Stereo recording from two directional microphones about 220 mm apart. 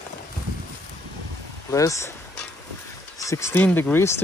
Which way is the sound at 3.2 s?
15° left (ahead or behind).